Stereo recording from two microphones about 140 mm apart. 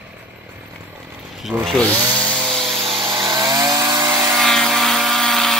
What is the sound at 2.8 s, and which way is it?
Vehicle, 40° right (ahead or behind).